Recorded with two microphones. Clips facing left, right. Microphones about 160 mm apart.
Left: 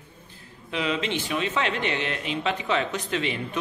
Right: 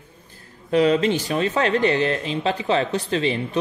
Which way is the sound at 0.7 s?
40° right (ahead or behind).